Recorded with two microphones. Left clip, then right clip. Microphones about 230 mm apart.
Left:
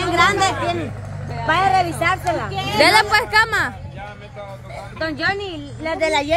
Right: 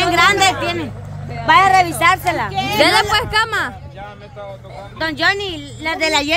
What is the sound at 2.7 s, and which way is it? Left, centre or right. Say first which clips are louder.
Speech: even; centre.